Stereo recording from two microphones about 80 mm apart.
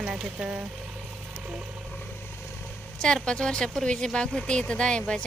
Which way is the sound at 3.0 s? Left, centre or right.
Centre.